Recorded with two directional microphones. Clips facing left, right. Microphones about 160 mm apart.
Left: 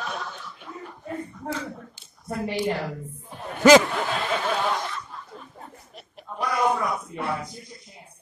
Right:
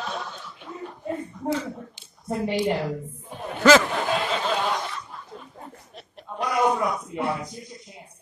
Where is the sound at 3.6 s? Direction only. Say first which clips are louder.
Left 2 dB; 15° left (ahead or behind).